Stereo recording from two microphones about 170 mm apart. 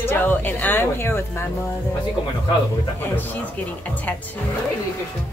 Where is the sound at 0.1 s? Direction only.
10° left (ahead or behind).